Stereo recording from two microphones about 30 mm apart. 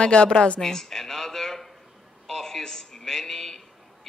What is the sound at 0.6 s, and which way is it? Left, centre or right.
A man's voice, centre.